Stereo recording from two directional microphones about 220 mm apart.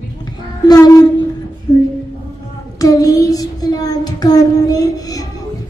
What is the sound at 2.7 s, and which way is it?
Child singing, 15° left (ahead or behind).